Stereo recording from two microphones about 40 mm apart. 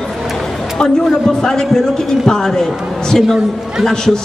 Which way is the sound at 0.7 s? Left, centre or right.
Centre.